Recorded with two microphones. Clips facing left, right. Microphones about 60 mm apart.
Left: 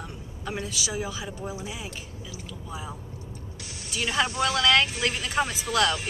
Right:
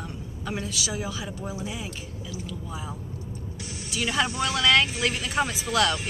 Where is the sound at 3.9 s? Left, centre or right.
Centre.